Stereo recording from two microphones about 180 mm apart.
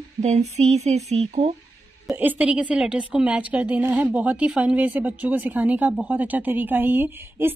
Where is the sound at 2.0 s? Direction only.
10° right (ahead or behind).